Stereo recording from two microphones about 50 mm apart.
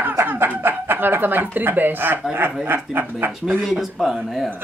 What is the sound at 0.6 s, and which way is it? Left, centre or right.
Speech, right.